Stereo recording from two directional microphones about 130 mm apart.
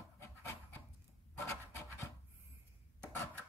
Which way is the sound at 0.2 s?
15° left (ahead or behind).